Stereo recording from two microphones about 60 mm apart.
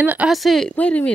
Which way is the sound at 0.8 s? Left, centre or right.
Left.